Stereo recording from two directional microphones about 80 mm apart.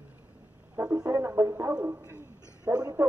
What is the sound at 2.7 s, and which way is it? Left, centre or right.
Speech, right.